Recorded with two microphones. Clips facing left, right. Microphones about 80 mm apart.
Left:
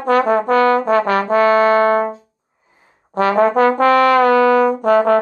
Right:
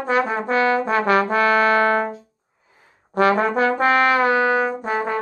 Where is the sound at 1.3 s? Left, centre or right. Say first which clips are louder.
Left 5 dB; left.